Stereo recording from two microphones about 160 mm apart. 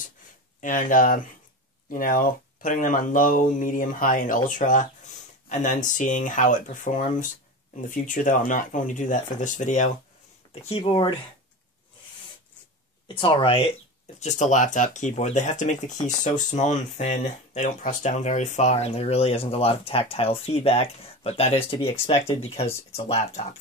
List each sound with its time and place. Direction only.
0.6 s speech: 55° left (ahead or behind)
10.6 s speech: 35° left (ahead or behind)
13.1 s speech: 30° left (ahead or behind)
14.2 s speech: 50° left (ahead or behind)